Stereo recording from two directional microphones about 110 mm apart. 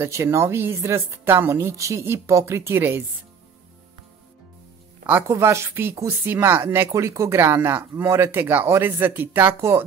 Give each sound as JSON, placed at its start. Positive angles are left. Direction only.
{"t": 0.0, "sound": "speech", "side_deg": -25}
{"t": 5.3, "sound": "speech", "side_deg": -25}